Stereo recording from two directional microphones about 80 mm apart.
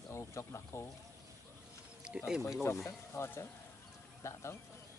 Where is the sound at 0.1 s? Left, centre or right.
Left.